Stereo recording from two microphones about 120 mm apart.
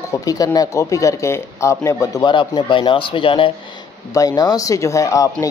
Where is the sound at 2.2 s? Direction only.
45° left (ahead or behind).